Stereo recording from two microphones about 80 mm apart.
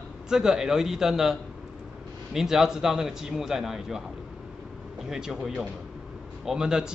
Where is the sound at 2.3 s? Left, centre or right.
Centre.